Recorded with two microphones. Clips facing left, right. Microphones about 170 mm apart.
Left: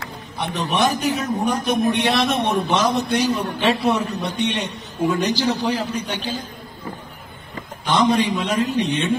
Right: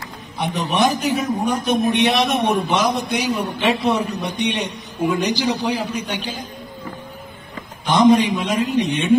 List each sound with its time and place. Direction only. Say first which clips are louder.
0.4 s a man's voice: right 2 dB; 15° right (ahead or behind)
7.8 s a man's voice: right 4 dB; 10° right (ahead or behind)